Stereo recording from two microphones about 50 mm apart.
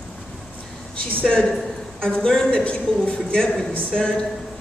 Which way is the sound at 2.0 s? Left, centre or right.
Centre.